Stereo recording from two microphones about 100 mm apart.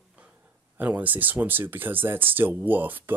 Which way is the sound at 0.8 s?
15° right (ahead or behind).